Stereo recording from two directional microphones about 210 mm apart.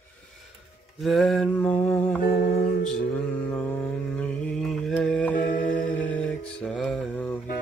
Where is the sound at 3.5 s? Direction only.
5° left (ahead or behind).